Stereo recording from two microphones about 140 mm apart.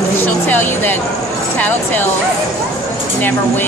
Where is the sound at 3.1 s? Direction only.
15° left (ahead or behind).